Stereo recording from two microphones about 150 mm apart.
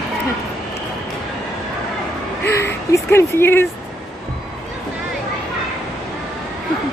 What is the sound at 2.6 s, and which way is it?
Vehicle, 15° left (ahead or behind).